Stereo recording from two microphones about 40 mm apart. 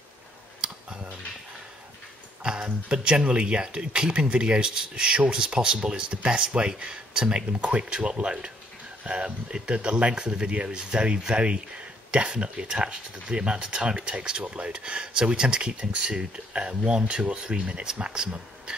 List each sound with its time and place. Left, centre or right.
0.6 s clicking: right
2.4 s speech: right